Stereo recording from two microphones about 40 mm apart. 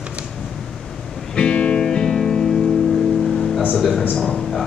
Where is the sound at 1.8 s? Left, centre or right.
Centre.